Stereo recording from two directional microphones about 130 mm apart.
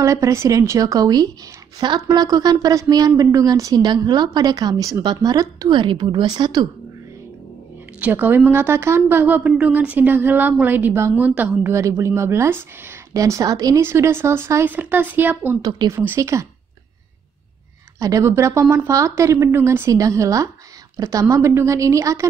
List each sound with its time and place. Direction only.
0.0 s a woman's voice: 25° right (ahead or behind)
8.0 s a woman's voice: 15° right (ahead or behind)
15.6 s a woman's voice: 30° right (ahead or behind)
17.9 s a woman's voice: 25° right (ahead or behind)